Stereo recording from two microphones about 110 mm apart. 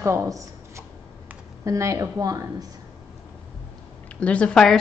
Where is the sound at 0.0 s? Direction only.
25° right (ahead or behind).